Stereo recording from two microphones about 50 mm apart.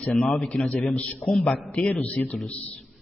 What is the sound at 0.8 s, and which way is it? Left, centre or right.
Speech, left.